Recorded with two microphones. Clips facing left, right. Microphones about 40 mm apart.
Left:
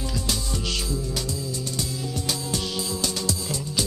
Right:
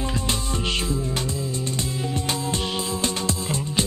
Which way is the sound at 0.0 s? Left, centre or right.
Right.